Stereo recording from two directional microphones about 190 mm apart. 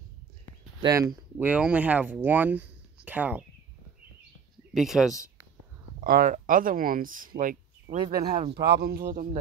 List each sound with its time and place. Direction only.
0.8 s speech: 15° right (ahead or behind)
4.7 s speech: centre (ahead or behind)
5.9 s speech: 50° right (ahead or behind)
7.9 s speech: 25° right (ahead or behind)
8.5 s speech: 60° right (ahead or behind); by 9.4 s 45° right (ahead or behind)